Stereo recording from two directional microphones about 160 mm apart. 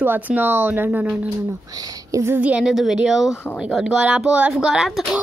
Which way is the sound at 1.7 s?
25° right (ahead or behind).